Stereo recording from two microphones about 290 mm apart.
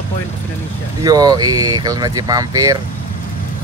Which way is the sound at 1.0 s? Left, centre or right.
Centre.